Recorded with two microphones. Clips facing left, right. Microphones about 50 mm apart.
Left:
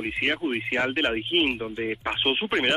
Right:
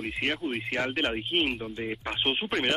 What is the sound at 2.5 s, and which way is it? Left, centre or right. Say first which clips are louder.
Speech: left 4 dB; centre.